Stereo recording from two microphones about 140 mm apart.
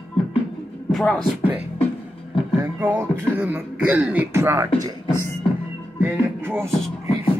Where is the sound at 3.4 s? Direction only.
10° right (ahead or behind).